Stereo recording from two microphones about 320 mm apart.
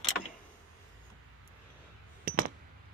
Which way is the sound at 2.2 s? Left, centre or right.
Right.